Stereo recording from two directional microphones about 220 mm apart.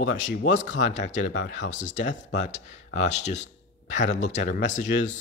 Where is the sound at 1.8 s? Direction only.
35° left (ahead or behind).